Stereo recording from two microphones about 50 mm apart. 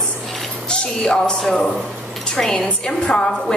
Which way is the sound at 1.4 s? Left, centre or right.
Centre.